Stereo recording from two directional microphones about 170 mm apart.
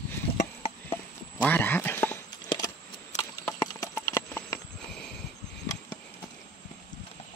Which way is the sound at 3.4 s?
20° left (ahead or behind).